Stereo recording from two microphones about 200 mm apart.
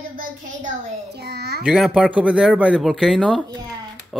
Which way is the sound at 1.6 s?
5° right (ahead or behind).